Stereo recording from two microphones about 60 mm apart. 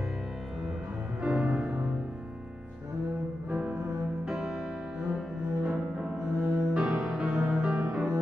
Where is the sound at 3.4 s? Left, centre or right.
Centre.